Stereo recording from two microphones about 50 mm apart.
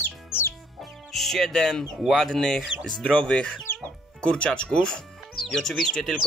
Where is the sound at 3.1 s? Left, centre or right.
Left.